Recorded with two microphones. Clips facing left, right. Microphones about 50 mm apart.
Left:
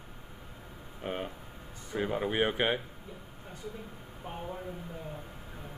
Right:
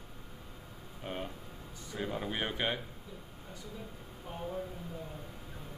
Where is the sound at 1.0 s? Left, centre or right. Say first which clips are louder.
Left 4 dB; left.